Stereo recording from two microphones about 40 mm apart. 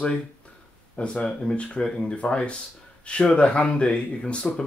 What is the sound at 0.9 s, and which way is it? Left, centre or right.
Speech, left.